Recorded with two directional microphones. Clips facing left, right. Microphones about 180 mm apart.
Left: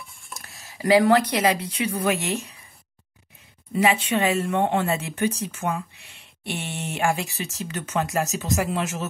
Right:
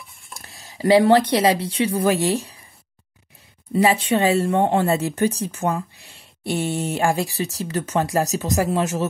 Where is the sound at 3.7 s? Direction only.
35° right (ahead or behind).